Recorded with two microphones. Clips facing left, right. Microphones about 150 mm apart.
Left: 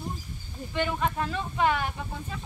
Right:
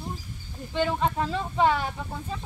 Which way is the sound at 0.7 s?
25° right (ahead or behind).